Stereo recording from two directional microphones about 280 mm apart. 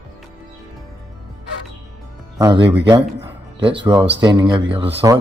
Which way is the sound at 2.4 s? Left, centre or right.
Centre.